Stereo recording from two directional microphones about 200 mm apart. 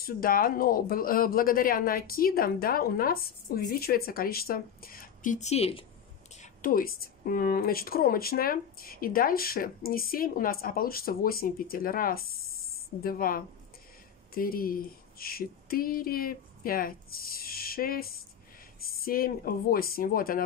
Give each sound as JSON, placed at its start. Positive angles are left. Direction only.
{"t": 0.0, "sound": "speech", "side_deg": 45}
{"t": 6.3, "sound": "speech", "side_deg": 40}